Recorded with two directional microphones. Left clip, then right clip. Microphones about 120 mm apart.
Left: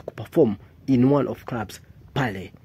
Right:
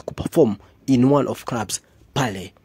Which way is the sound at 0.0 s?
35° right (ahead or behind).